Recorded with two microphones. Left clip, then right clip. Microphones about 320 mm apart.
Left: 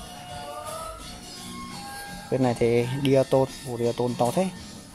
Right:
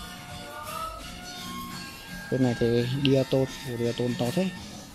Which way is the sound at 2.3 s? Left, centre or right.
Left.